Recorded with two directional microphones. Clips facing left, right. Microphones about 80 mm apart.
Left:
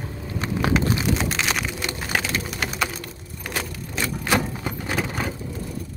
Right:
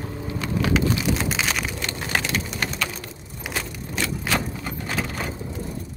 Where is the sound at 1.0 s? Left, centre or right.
Centre.